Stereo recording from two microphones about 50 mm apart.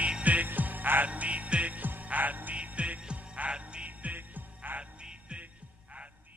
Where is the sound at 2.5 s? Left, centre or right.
Right.